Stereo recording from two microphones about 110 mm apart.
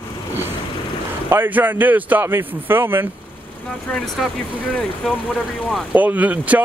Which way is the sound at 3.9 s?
10° left (ahead or behind).